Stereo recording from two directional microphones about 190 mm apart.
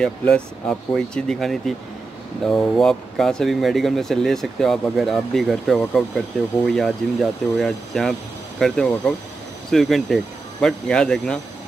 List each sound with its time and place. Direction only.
0.0 s speech: 5° left (ahead or behind)